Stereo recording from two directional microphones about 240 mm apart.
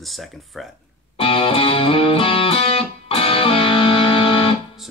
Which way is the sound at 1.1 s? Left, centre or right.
Left.